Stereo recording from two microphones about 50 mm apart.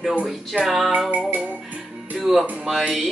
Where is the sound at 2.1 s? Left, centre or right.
Centre.